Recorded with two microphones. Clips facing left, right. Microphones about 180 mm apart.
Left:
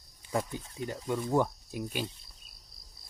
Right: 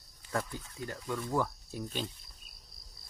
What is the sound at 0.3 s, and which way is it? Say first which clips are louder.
Speech: left 3 dB; 20° left (ahead or behind).